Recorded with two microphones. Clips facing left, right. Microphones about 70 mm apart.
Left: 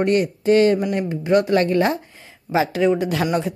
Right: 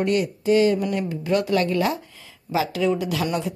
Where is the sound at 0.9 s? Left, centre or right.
Left.